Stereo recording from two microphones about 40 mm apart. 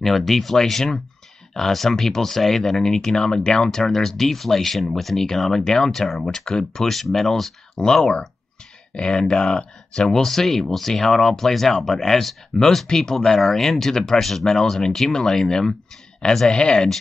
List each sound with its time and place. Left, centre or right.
0.0 s speech: centre
6.3 s speech: centre
6.9 s speech: centre
7.7 s speech: centre
12.8 s speech: centre
13.1 s speech: centre